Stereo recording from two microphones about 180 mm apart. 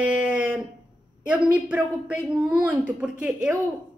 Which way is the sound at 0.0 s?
5° right (ahead or behind).